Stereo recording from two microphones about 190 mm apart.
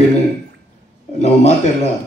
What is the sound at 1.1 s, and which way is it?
Speech, 35° left (ahead or behind).